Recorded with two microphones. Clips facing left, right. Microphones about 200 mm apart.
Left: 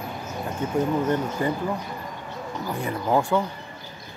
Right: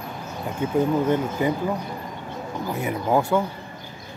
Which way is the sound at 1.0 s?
10° right (ahead or behind).